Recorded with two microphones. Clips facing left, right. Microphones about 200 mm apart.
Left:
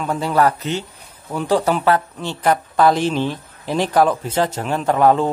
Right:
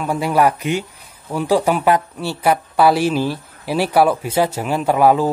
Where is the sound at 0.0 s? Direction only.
10° right (ahead or behind).